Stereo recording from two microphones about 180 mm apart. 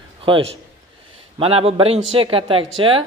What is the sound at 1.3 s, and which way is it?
A man's voice, 30° right (ahead or behind).